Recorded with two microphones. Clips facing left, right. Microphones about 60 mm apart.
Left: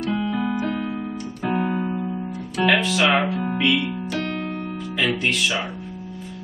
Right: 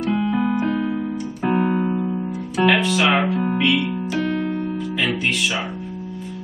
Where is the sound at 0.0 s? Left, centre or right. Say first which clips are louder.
Right 3 dB; centre.